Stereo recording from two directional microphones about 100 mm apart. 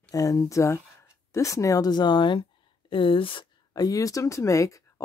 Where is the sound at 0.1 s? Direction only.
35° left (ahead or behind); by 3.4 s 60° left (ahead or behind).